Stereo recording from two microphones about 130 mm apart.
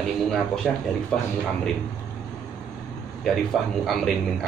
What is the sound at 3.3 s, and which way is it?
Speech, centre (ahead or behind).